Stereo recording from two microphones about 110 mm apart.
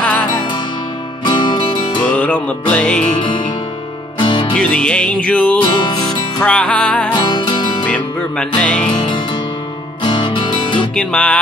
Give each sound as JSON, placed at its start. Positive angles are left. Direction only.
{"t": 1.2, "sound": "music", "side_deg": 40}
{"t": 2.0, "sound": "music", "side_deg": 15}
{"t": 4.2, "sound": "music", "side_deg": 45}
{"t": 4.6, "sound": "music", "side_deg": 5}
{"t": 5.6, "sound": "music", "side_deg": 45}
{"t": 6.4, "sound": "music", "side_deg": 10}
{"t": 7.2, "sound": "music", "side_deg": 45}
{"t": 7.8, "sound": "music", "side_deg": 10}
{"t": 10.0, "sound": "music", "side_deg": 45}
{"t": 11.0, "sound": "music", "side_deg": 10}